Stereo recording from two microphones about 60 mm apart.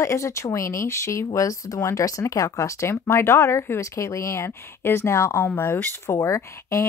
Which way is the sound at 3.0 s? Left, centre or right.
Left.